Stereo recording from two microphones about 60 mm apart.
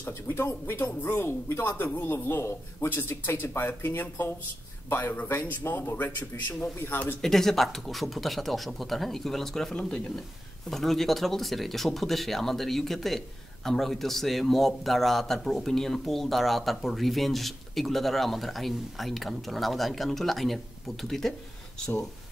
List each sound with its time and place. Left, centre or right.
0.3 s a man's voice: left
7.2 s a man's voice: centre
9.8 s speech: centre
10.7 s a man's voice: centre
21.3 s a sound: centre